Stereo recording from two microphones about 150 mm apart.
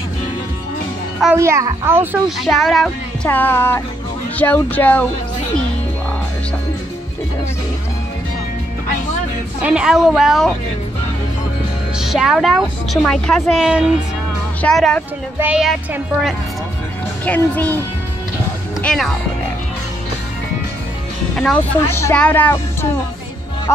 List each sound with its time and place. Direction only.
1.3 s a woman's voice: 20° right (ahead or behind)
2.2 s a woman's voice: centre (ahead or behind)
3.3 s speech: 15° left (ahead or behind)
9.6 s a woman's voice: 10° right (ahead or behind)
12.0 s a woman's voice: 5° right (ahead or behind)
15.3 s a woman's voice: 10° right (ahead or behind)
17.2 s speech: 10° left (ahead or behind)
18.8 s speech: 5° left (ahead or behind)
21.4 s a woman's voice: 5° left (ahead or behind)
21.8 s speech: 15° left (ahead or behind)